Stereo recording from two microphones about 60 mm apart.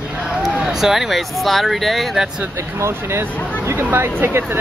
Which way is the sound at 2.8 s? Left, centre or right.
Right.